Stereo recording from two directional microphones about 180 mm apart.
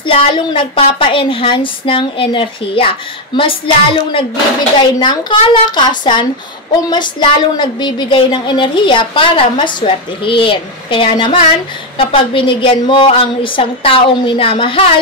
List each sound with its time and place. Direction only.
0.0 s a woman's voice: 25° left (ahead or behind)